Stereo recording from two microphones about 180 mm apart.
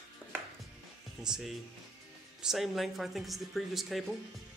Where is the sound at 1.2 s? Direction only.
Centre (ahead or behind).